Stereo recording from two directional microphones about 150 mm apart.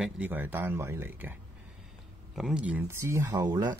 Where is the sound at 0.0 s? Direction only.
10° right (ahead or behind).